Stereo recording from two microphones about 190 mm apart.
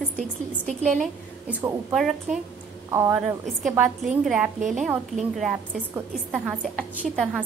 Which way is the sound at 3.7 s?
5° right (ahead or behind).